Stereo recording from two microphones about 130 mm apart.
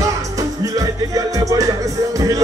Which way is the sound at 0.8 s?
25° right (ahead or behind).